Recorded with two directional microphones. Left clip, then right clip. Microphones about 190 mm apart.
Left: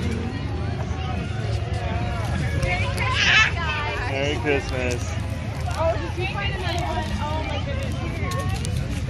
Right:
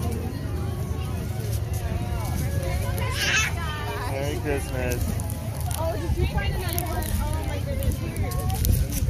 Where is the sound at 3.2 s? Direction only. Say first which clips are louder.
Left 6 dB; 30° right (ahead or behind).